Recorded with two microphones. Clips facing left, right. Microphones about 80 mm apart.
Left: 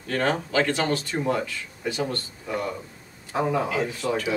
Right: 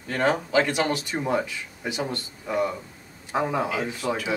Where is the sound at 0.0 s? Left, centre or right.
Centre.